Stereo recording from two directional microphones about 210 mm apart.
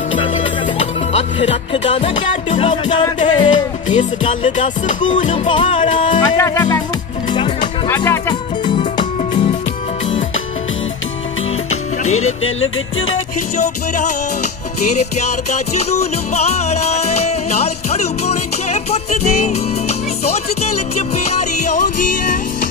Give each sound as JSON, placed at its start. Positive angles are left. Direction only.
{"t": 0.1, "sound": "music", "side_deg": 25}
{"t": 3.5, "sound": "music", "side_deg": 35}
{"t": 5.8, "sound": "music", "side_deg": 35}
{"t": 6.1, "sound": "speech", "side_deg": 15}
{"t": 7.3, "sound": "music", "side_deg": 20}
{"t": 12.1, "sound": "music", "side_deg": 80}
{"t": 13.6, "sound": "music", "side_deg": 35}
{"t": 15.9, "sound": "music", "side_deg": 30}
{"t": 20.6, "sound": "music", "side_deg": 30}